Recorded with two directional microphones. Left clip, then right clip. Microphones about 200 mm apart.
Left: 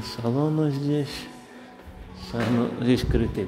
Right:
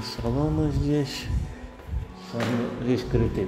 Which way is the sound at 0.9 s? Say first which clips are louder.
Right 1 dB; centre (ahead or behind).